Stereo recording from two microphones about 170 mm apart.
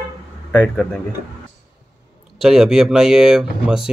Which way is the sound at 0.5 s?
10° left (ahead or behind).